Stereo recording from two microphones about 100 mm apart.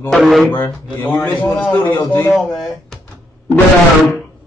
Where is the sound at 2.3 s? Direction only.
Centre (ahead or behind).